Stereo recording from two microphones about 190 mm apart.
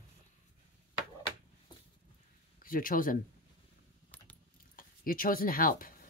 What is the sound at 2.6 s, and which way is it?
Speech, 45° left (ahead or behind).